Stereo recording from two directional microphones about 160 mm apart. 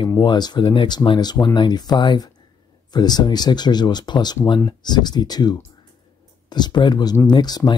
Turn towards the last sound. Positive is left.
turn(degrees=25)  # may be behind; listen again after turning